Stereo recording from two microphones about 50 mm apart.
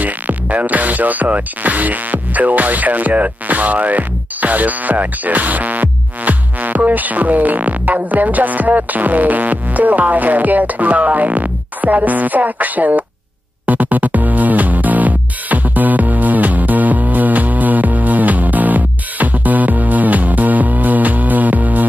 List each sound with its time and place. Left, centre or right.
0.0 s music: right